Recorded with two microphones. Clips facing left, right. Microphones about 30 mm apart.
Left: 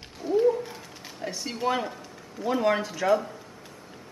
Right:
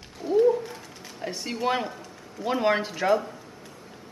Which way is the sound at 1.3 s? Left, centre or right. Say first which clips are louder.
Right 1 dB; centre.